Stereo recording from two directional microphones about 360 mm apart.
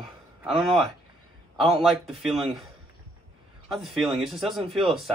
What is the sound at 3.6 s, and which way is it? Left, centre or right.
A man's voice, centre.